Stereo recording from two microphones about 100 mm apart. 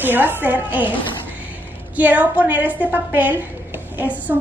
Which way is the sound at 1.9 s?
15° right (ahead or behind).